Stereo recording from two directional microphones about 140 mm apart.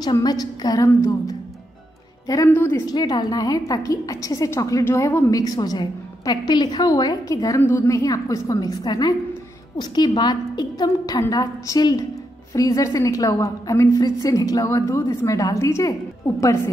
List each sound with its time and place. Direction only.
0.0 s a woman's voice: 30° left (ahead or behind)
2.9 s a woman's voice: 30° left (ahead or behind)